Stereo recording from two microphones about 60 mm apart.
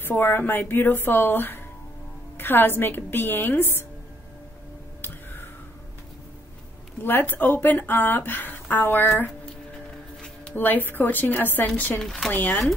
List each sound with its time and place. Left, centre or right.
0.0 s speech: left
5.0 s a sound: left
7.0 s speech: left
10.5 s speech: left
12.0 s speech: centre
12.3 s speech: left